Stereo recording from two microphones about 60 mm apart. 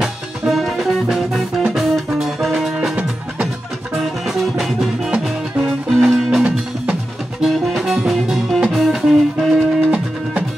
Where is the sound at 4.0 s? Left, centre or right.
Centre.